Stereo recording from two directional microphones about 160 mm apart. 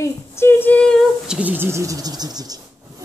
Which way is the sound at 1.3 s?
10° right (ahead or behind).